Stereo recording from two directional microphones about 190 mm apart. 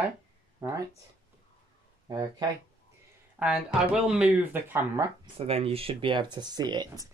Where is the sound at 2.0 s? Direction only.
20° right (ahead or behind).